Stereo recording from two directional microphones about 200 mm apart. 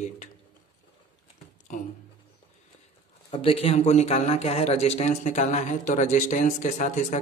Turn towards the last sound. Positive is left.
turn(degrees=35)  # may be behind; listen again after turning